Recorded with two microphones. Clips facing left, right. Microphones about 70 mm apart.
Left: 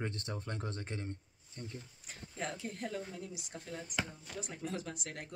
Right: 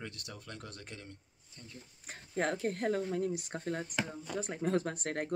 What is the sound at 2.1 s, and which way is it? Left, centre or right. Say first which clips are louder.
Speech: right 8 dB; right.